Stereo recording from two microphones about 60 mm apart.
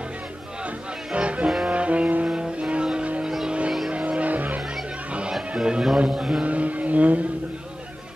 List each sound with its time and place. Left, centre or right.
1.1 s music: centre
1.7 s brass instrument: right
2.2 s vehicle: centre
3.3 s vehicle: centre
3.9 s music: right
5.6 s a man's voice: centre
6.4 s vehicle: right